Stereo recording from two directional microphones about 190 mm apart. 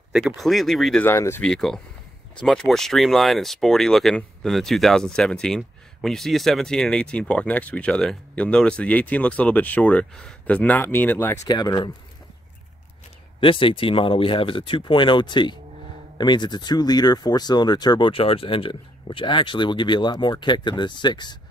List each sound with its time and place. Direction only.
0.1 s speech: centre (ahead or behind)
1.0 s speech: 15° left (ahead or behind)
11.4 s speech: 20° left (ahead or behind)
13.4 s speech: 25° left (ahead or behind)